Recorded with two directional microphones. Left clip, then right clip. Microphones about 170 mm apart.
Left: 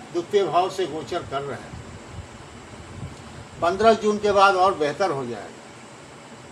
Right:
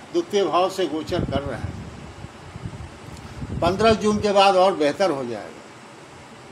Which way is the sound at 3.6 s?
65° right (ahead or behind).